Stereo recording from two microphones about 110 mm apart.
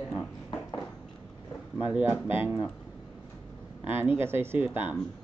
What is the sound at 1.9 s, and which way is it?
Speech, 20° right (ahead or behind).